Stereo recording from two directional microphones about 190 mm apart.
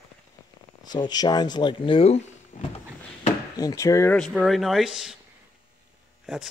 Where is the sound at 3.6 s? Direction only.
20° left (ahead or behind).